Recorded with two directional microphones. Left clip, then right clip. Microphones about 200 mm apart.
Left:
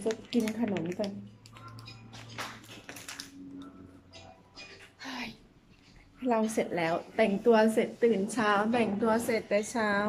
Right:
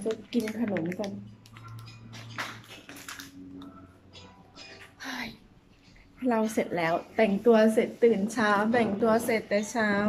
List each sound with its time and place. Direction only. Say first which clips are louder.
0.1 s speech: right 1 dB; 20° left (ahead or behind)
0.6 s speech: right 2 dB; 5° left (ahead or behind)
5.0 s a sound: right 3 dB; centre (ahead or behind)
6.1 s a woman's voice: right 1 dB; centre (ahead or behind)